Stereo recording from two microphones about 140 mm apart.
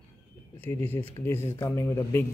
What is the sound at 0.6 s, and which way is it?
Speech, 15° left (ahead or behind).